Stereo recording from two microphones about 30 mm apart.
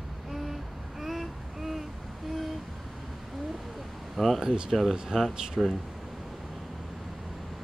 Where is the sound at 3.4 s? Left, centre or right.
Centre.